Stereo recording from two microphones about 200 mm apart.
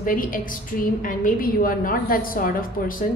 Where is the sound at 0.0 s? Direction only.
45° left (ahead or behind).